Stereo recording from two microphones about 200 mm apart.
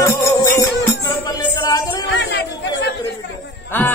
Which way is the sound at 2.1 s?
60° left (ahead or behind).